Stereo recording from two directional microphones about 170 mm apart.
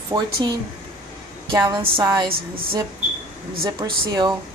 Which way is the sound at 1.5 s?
20° right (ahead or behind).